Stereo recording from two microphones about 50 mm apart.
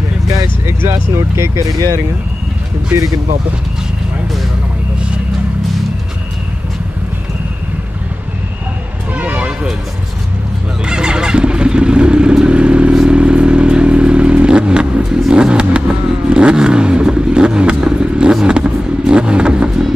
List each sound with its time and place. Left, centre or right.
0.3 s vehicle: right
1.1 s speech: right
9.1 s a sound: right
10.9 s vehicle: centre